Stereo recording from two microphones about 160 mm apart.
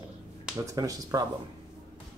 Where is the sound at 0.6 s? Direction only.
20° right (ahead or behind).